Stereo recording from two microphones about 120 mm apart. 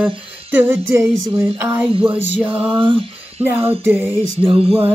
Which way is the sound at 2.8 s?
50° right (ahead or behind).